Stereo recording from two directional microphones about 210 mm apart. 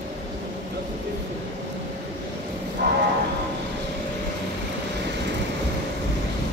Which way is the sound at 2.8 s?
50° right (ahead or behind).